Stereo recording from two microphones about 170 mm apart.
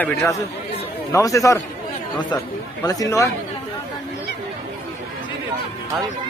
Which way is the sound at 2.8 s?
20° left (ahead or behind).